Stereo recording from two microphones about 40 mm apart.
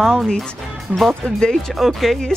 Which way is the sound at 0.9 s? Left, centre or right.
Right.